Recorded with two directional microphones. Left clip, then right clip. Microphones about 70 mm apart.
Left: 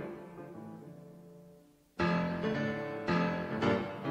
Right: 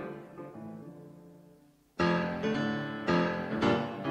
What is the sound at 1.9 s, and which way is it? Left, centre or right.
Music, right.